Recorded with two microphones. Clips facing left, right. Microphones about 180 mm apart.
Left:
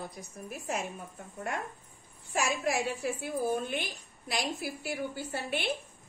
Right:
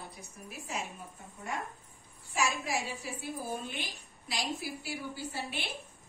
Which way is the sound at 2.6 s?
55° left (ahead or behind).